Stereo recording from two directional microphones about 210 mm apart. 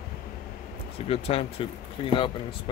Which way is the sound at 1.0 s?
30° left (ahead or behind).